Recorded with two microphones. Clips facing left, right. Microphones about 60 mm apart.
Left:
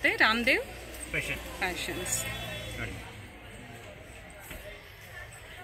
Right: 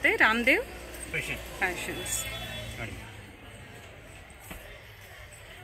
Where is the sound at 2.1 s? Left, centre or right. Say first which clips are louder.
Left 1 dB; centre.